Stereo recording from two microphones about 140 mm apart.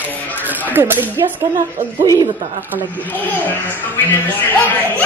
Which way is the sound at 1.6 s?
65° right (ahead or behind).